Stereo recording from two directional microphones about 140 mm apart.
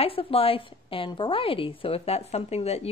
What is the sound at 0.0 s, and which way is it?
A woman's voice, 40° left (ahead or behind).